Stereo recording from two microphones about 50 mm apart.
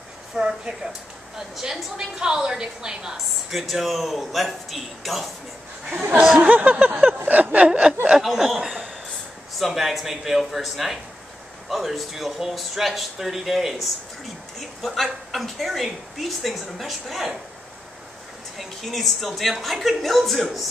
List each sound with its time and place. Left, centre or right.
0.4 s a woman's voice: centre
5.9 s a sound: right
7.2 s speech: right
8.3 s a woman's voice: centre
18.6 s a woman's voice: centre